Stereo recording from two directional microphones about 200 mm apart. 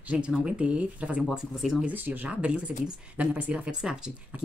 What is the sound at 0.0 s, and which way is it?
Speech, 5° right (ahead or behind).